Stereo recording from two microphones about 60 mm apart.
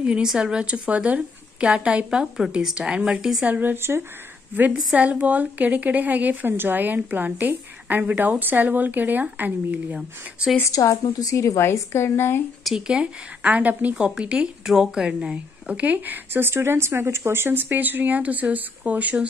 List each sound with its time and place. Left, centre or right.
0.0 s a woman's voice: centre
3.4 s a woman's voice: right
3.7 s speech: right
4.7 s a woman's voice: right
9.9 s a woman's voice: centre
10.7 s a woman's voice: left
12.8 s a woman's voice: centre
13.9 s a woman's voice: centre